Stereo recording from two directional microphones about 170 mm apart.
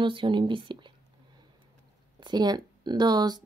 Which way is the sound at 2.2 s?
25° right (ahead or behind).